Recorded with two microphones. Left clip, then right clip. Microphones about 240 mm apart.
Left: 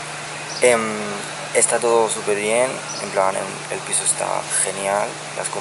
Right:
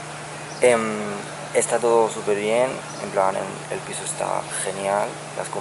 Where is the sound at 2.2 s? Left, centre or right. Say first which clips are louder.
Left 2 dB; centre.